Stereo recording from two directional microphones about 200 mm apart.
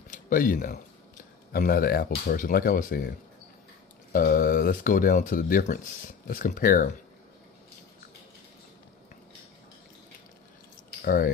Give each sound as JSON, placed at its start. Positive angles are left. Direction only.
{"t": 0.1, "sound": "speech", "side_deg": 45}
{"t": 4.1, "sound": "speech", "side_deg": 45}